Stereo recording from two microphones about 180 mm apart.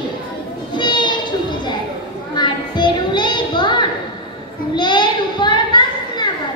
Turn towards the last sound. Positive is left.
turn(degrees=25)  # may be behind; listen again after turning